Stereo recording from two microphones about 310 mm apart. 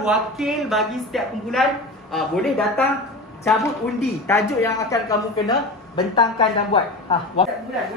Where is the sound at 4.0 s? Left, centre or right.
Centre.